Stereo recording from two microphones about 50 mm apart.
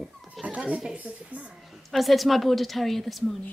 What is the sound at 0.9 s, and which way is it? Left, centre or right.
Speech, right.